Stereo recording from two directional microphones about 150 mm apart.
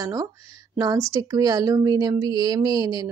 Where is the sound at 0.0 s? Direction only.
25° right (ahead or behind).